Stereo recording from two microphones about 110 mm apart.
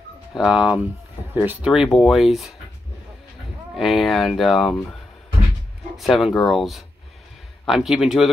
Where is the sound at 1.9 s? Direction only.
Centre (ahead or behind).